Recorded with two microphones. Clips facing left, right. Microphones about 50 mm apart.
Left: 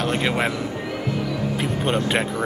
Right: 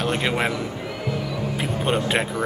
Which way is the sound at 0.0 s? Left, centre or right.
Centre.